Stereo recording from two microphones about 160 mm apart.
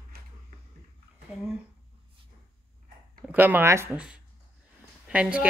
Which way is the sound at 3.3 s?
10° right (ahead or behind).